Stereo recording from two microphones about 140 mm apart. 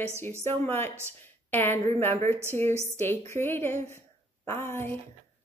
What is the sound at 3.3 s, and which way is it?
Speech, 15° left (ahead or behind).